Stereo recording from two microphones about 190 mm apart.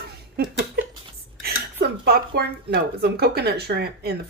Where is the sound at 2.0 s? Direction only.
60° right (ahead or behind).